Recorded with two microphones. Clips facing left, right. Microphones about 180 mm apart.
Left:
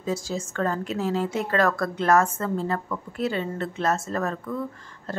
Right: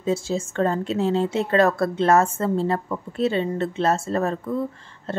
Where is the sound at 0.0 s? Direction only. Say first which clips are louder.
Right 5 dB; 25° right (ahead or behind).